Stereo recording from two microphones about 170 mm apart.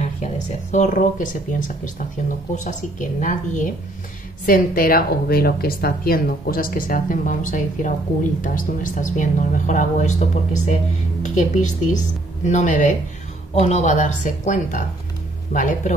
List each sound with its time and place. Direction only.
0.7 s a woman's voice: 45° left (ahead or behind)
2.5 s a woman's voice: 45° left (ahead or behind)
11.2 s a woman's voice: 45° left (ahead or behind)